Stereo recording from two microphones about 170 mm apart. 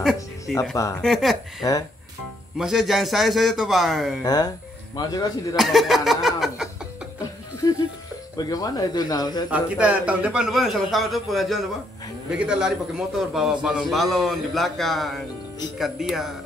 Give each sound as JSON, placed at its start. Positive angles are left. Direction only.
{"t": 0.7, "sound": "speech", "side_deg": 20}
{"t": 1.0, "sound": "a man's voice", "side_deg": 0}
{"t": 1.6, "sound": "speech", "side_deg": 20}
{"t": 2.5, "sound": "a man's voice", "side_deg": 0}
{"t": 4.2, "sound": "speech", "side_deg": 20}
{"t": 5.6, "sound": "speech", "side_deg": 0}
{"t": 8.4, "sound": "speech", "side_deg": 20}
{"t": 9.5, "sound": "a man's voice", "side_deg": -10}